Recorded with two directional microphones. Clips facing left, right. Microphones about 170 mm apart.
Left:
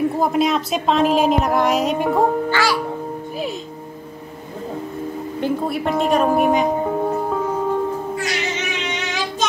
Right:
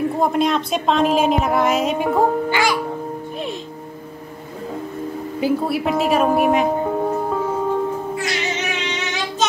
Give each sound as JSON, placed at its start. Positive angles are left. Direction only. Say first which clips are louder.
{"t": 0.2, "sound": "a woman's voice", "louder": "even", "side_deg": 0}
{"t": 2.5, "sound": "speech", "louder": "even", "side_deg": -20}
{"t": 5.4, "sound": "music", "louder": "right 2 dB", "side_deg": -5}